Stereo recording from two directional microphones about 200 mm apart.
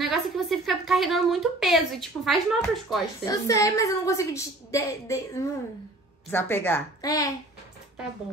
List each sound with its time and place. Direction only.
0.0 s a woman's voice: centre (ahead or behind)
3.3 s a woman's voice: 15° left (ahead or behind)